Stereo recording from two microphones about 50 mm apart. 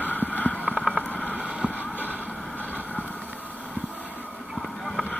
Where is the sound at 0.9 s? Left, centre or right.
Left.